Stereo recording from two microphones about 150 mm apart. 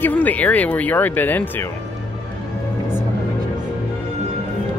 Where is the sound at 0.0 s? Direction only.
10° left (ahead or behind).